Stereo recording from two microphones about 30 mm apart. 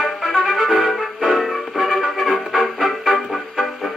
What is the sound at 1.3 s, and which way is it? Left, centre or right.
Music, centre.